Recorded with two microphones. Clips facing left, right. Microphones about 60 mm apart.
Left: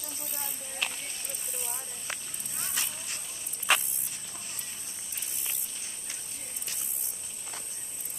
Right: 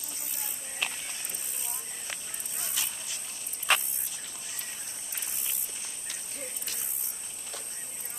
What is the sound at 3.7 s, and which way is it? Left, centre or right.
Walk, centre.